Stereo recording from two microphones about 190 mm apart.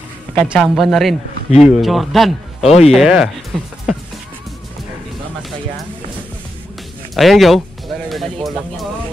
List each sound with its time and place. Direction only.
0.5 s speech: centre (ahead or behind)
2.6 s speech: 35° left (ahead or behind)
2.9 s speech: 5° right (ahead or behind)
7.2 s speech: centre (ahead or behind)